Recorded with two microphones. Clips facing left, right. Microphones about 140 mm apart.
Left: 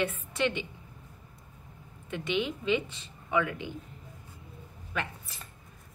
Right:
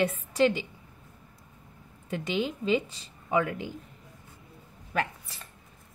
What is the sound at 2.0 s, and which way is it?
A woman's voice, 40° right (ahead or behind).